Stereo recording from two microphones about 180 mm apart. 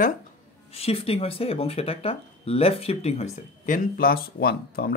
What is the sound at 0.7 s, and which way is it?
Speech, 35° left (ahead or behind).